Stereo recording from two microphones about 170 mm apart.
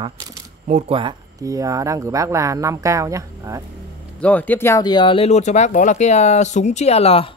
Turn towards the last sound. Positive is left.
turn(degrees=35)  # may be behind; listen again after turning